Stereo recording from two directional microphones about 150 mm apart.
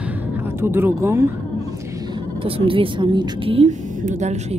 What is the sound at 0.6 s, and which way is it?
Speech, 15° right (ahead or behind).